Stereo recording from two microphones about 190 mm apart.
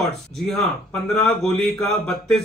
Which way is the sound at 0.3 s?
Centre (ahead or behind).